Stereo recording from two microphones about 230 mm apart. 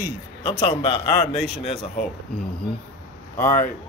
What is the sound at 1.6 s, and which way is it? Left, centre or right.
Speech, left.